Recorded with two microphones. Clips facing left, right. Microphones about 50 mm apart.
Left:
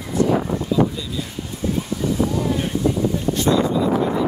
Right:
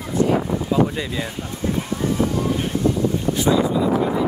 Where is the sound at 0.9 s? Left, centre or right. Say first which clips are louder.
Right 3 dB; right.